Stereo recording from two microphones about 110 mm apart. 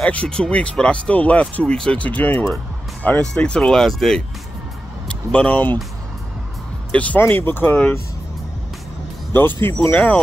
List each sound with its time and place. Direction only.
0.0 s speech: 10° left (ahead or behind)
6.9 s speech: 15° left (ahead or behind)
9.8 s speech: 15° left (ahead or behind)